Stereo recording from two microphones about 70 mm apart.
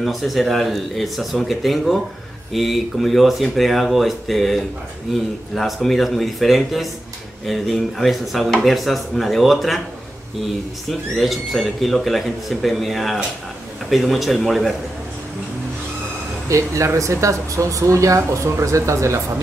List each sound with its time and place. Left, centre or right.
0.0 s speech: centre
16.4 s speech: right